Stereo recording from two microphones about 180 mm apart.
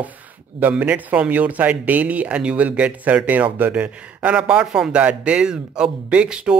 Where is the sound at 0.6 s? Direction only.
10° right (ahead or behind).